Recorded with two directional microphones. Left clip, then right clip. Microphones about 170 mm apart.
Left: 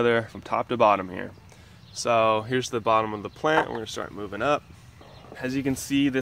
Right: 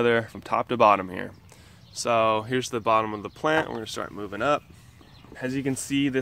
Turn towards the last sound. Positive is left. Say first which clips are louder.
# left 1 dB
turn(degrees=-30)  # may be behind; listen again after turning